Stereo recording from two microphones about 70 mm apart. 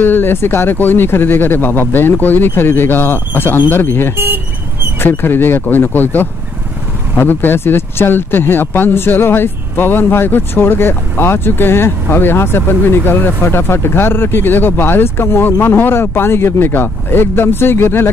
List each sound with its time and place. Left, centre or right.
0.0 s speech: left